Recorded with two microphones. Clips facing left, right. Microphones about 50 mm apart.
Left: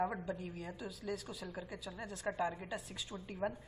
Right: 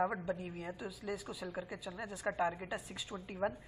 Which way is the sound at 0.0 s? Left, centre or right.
Centre.